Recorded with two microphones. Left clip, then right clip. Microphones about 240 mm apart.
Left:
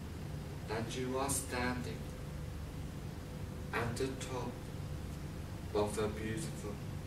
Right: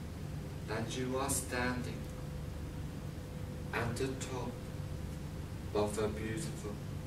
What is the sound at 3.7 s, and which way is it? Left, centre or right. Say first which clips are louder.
Speech: even; centre.